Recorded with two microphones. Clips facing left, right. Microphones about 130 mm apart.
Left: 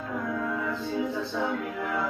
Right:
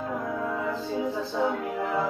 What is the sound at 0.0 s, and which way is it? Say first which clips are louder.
Music: right 1 dB; 30° right (ahead or behind).